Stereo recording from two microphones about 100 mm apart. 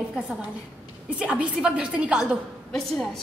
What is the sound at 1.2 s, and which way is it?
A woman's voice, 10° right (ahead or behind).